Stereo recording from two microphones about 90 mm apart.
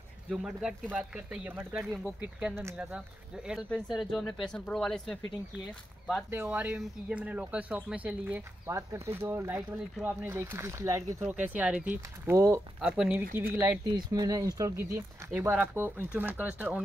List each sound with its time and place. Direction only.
0.3 s speech: 10° right (ahead or behind)
3.9 s speech: centre (ahead or behind)
6.3 s speech: 25° right (ahead or behind)
8.6 s speech: 30° right (ahead or behind)
11.1 s speech: 15° right (ahead or behind)
12.3 s speech: 30° right (ahead or behind)
12.8 s speech: 5° right (ahead or behind)
13.1 s speech: 20° right (ahead or behind)
13.8 s speech: 45° right (ahead or behind)
15.0 s speech: 25° right (ahead or behind)